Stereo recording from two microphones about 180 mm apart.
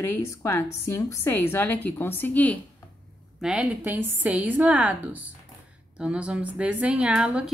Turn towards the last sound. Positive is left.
turn(degrees=-5)  # may be behind; listen again after turning